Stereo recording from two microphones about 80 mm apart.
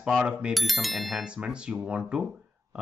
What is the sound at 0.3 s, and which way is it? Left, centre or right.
Speech, centre.